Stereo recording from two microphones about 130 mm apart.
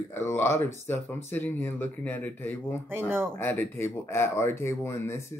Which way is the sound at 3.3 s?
20° left (ahead or behind).